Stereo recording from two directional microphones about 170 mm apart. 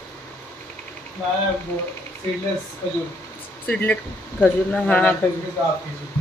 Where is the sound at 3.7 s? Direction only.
10° left (ahead or behind).